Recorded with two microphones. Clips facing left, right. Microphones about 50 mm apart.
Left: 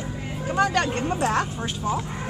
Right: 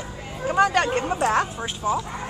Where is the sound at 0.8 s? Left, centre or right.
Centre.